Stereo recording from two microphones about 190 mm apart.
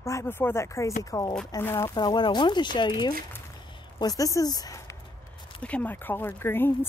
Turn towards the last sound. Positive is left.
turn(degrees=10)  # may be behind; listen again after turning